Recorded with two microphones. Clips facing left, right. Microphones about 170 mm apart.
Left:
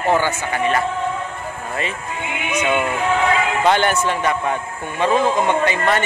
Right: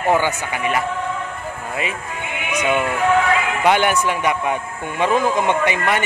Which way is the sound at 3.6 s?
10° right (ahead or behind).